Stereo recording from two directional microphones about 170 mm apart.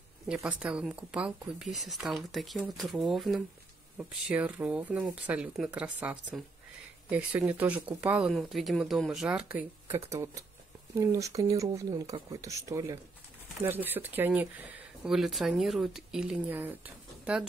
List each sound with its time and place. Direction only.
0.3 s speech: 5° right (ahead or behind)